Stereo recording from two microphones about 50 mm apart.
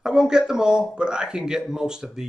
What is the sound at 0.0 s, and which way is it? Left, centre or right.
A man's voice, centre.